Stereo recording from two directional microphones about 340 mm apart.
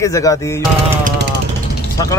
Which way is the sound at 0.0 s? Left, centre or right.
Centre.